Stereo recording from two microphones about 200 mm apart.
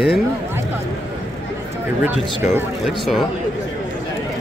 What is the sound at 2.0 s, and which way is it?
Speech, 10° right (ahead or behind).